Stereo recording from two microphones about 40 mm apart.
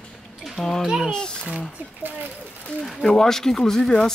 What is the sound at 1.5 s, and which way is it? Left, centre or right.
Speech, right.